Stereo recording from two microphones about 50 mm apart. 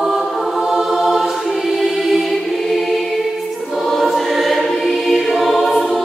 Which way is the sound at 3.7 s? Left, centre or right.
Centre.